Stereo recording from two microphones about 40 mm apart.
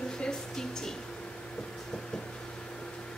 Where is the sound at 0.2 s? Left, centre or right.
Centre.